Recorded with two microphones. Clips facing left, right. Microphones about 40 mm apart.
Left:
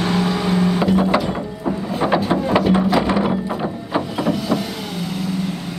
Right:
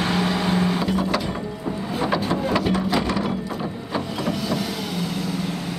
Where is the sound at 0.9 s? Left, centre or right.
Left.